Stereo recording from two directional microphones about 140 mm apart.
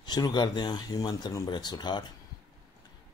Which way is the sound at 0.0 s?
30° left (ahead or behind).